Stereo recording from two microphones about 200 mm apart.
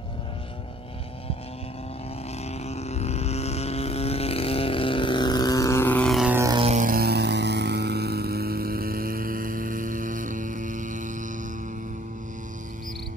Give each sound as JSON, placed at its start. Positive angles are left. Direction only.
{"t": 2.4, "sound": "vehicle", "side_deg": 30}
{"t": 6.3, "sound": "vehicle", "side_deg": -15}
{"t": 6.6, "sound": "vehicle", "side_deg": -35}